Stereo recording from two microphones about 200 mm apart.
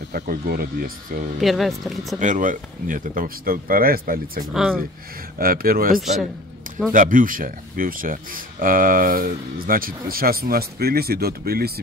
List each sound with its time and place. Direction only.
0.1 s speech: 50° right (ahead or behind)
1.4 s speech: centre (ahead or behind)
2.1 s speech: 40° right (ahead or behind)
4.6 s speech: 5° right (ahead or behind)
5.4 s speech: 45° right (ahead or behind)
5.9 s speech: centre (ahead or behind)
6.9 s speech: 40° right (ahead or behind)